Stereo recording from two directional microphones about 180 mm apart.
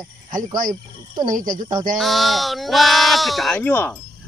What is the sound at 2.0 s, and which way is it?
Speech, centre (ahead or behind).